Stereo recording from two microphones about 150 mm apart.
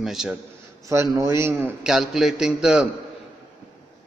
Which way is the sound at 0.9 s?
20° right (ahead or behind).